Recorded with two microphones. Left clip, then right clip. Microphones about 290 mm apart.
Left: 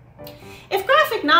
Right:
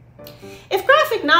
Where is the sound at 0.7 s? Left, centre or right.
Centre.